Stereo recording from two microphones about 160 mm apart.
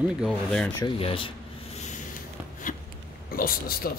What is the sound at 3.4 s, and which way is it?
Speech, 65° left (ahead or behind).